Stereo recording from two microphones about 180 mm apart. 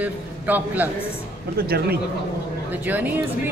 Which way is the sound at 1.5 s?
60° right (ahead or behind).